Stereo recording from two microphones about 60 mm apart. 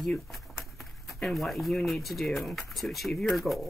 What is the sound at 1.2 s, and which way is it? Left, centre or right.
Speech, centre.